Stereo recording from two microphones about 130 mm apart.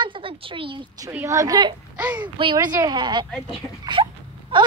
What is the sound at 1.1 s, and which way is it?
Speech, 25° right (ahead or behind).